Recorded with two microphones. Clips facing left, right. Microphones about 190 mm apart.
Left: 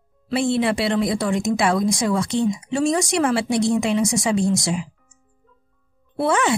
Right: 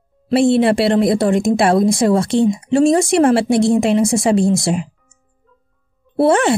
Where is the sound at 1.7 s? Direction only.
25° right (ahead or behind).